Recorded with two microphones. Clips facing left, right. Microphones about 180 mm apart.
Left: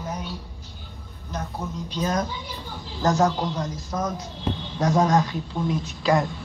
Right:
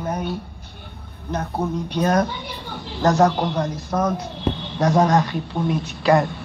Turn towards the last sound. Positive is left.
turn(degrees=-65)  # may be behind; listen again after turning